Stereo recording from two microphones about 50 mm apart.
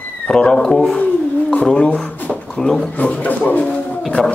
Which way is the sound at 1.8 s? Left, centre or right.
Left.